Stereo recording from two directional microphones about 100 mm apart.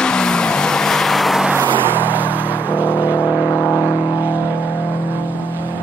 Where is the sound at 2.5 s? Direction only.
20° left (ahead or behind).